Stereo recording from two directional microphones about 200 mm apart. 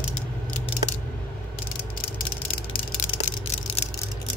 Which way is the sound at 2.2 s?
45° left (ahead or behind).